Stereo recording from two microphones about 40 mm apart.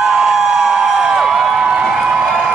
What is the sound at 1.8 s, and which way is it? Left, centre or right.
Crowd, centre.